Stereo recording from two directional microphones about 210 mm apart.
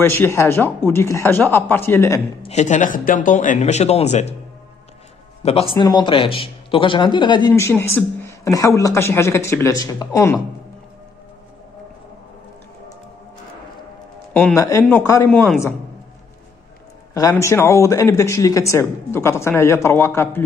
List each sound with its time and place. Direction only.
0.0 s a man's voice: 10° left (ahead or behind)
2.4 s speech: 35° left (ahead or behind)
5.4 s a man's voice: 30° left (ahead or behind)
14.3 s a man's voice: 10° left (ahead or behind)
17.1 s a man's voice: 15° left (ahead or behind)